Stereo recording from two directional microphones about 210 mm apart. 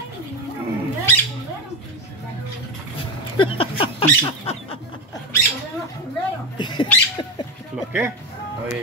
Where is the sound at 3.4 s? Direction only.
25° left (ahead or behind).